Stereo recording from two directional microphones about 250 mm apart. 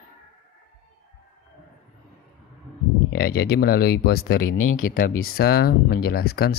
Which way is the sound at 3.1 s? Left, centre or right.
Left.